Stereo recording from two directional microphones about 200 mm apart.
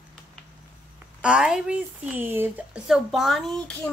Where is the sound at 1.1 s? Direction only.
5° right (ahead or behind).